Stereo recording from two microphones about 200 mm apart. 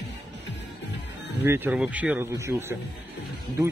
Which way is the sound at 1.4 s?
10° right (ahead or behind).